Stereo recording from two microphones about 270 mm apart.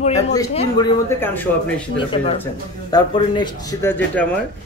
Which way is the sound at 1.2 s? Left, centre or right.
Centre.